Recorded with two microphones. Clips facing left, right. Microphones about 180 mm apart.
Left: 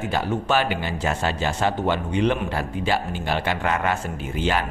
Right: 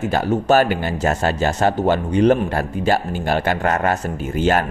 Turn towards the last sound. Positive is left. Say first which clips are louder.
# right 6 dB
turn(degrees=-45)  # may be behind; listen again after turning